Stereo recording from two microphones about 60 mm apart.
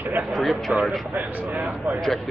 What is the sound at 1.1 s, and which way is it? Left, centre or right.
Speech, right.